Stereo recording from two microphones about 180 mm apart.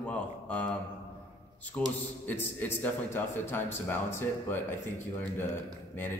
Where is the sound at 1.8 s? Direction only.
10° left (ahead or behind).